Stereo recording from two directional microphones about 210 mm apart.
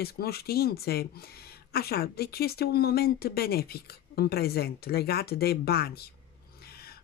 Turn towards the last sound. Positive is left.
turn(degrees=50)  # may be behind; listen again after turning